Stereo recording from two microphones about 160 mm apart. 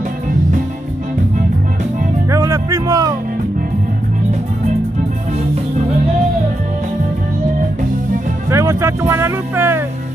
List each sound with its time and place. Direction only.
2.3 s music: 20° right (ahead or behind)
8.5 s music: 15° right (ahead or behind)